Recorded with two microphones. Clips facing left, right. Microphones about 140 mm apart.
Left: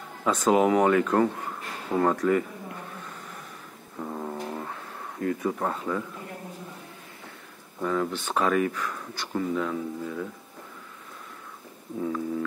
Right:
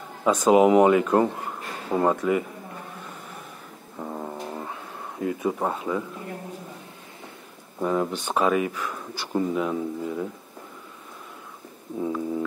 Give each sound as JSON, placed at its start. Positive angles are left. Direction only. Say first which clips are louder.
{"t": 0.2, "sound": "speech", "louder": "right 4 dB", "side_deg": -10}
{"t": 4.0, "sound": "a sound", "louder": "even", "side_deg": -10}
{"t": 5.2, "sound": "speech", "louder": "right 2 dB", "side_deg": -15}
{"t": 7.8, "sound": "speech", "louder": "right 3 dB", "side_deg": -20}
{"t": 9.3, "sound": "speech", "louder": "right 3 dB", "side_deg": -15}
{"t": 12.0, "sound": "foghorn", "louder": "right 2 dB", "side_deg": -15}